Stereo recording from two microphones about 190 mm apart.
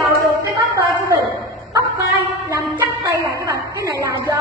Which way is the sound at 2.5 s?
15° right (ahead or behind).